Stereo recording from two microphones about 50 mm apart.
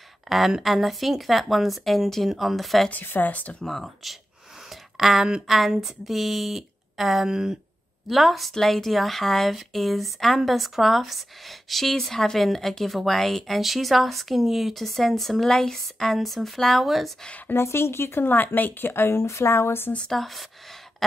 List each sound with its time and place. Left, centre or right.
0.3 s speech: centre
2.9 s speech: left
3.6 s speech: centre
4.6 s a sound: centre
5.5 s speech: centre
8.1 s speech: centre
17.6 s a woman's voice: left
19.2 s speech: left
20.1 s speech: centre